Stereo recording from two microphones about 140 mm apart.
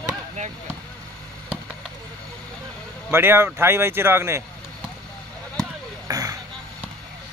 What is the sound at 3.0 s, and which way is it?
A man's voice, 15° right (ahead or behind).